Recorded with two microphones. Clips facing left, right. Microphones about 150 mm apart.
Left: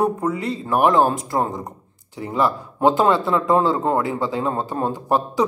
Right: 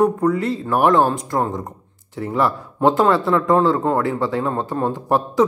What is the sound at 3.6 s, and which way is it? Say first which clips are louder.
Speech: right 2 dB; 20° left (ahead or behind).